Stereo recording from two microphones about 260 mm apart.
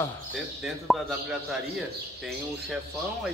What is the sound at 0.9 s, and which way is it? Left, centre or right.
Speech, centre.